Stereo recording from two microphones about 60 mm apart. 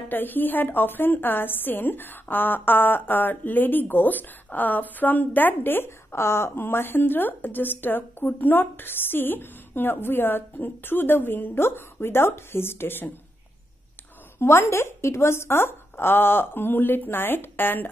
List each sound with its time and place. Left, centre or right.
0.1 s a woman's voice: left
14.4 s a woman's voice: left